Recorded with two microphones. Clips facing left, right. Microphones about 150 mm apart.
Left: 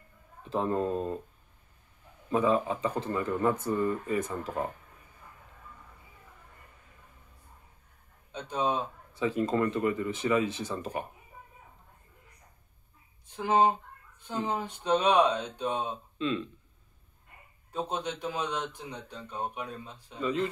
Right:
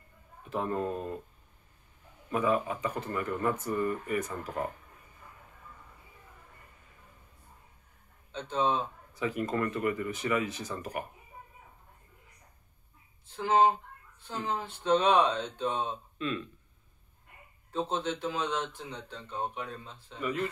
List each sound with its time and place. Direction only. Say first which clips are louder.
0.4 s speech: left 3 dB; 25° left (ahead or behind)
2.3 s speech: left 2 dB; 25° left (ahead or behind)
8.3 s speech: right 1 dB; 15° left (ahead or behind)
9.1 s speech: left 4 dB; 25° left (ahead or behind)
13.4 s speech: even; 15° left (ahead or behind)
17.7 s speech: right 1 dB; 15° left (ahead or behind)